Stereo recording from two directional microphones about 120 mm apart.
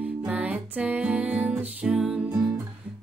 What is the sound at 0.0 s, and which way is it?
Music, 15° right (ahead or behind).